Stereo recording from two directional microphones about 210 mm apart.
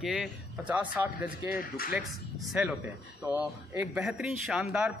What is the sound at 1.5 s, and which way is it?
Speech, 45° left (ahead or behind).